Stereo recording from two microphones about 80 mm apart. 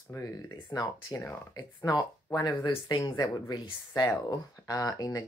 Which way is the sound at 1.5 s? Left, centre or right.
Left.